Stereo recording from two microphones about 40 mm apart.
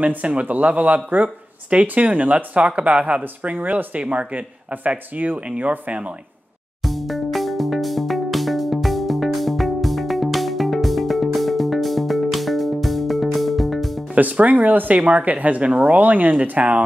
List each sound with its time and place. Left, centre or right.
0.0 s speech: right
6.8 s music: centre
14.1 s speech: right